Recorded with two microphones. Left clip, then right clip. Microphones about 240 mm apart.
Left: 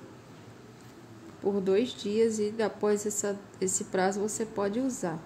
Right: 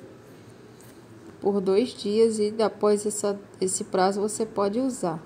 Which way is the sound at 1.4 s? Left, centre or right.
Centre.